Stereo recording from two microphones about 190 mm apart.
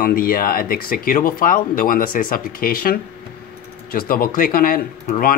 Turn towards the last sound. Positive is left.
turn(degrees=50)  # may be behind; listen again after turning